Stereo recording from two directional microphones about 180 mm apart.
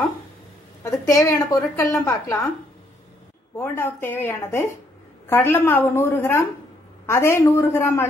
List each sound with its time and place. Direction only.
0.8 s a woman's voice: 15° left (ahead or behind)
3.5 s a woman's voice: 10° left (ahead or behind)